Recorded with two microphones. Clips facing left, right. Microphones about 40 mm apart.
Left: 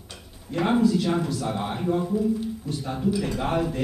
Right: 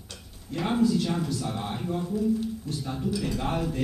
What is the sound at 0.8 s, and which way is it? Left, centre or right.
Speech, centre.